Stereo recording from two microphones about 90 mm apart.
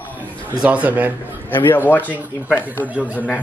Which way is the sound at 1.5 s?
25° left (ahead or behind).